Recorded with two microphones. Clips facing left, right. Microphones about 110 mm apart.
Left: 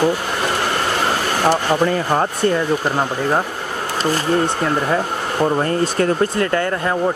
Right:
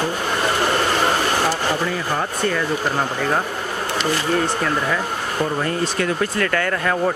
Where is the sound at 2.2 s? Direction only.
30° left (ahead or behind).